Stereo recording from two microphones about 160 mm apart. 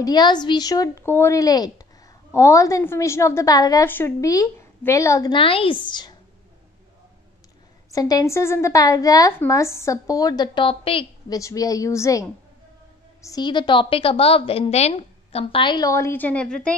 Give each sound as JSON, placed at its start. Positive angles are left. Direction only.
{"t": 0.0, "sound": "a woman's voice", "side_deg": 25}
{"t": 5.3, "sound": "a woman's voice", "side_deg": 35}
{"t": 7.9, "sound": "a woman's voice", "side_deg": 25}
{"t": 11.2, "sound": "a woman's voice", "side_deg": 20}